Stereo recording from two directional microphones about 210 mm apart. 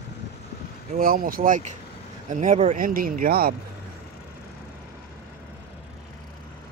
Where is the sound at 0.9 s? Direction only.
40° right (ahead or behind).